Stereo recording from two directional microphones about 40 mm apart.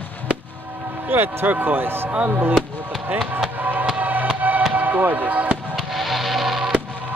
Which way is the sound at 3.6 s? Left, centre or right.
Right.